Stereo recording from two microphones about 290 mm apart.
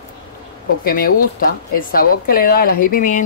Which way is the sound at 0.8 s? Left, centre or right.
Left.